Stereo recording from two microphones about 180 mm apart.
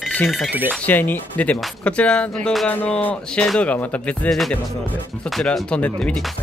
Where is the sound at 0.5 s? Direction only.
10° right (ahead or behind).